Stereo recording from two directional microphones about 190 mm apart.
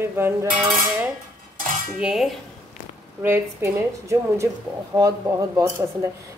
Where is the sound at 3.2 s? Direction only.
15° right (ahead or behind).